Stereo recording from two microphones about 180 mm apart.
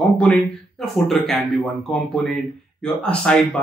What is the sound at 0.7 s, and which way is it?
Speech, centre (ahead or behind).